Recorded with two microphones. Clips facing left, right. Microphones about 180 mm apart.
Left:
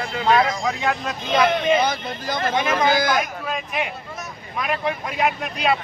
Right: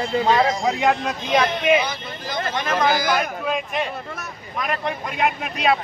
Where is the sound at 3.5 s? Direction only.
5° left (ahead or behind).